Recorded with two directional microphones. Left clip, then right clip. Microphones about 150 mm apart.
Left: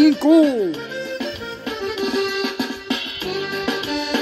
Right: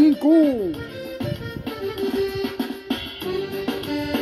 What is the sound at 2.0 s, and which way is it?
Music, 40° left (ahead or behind).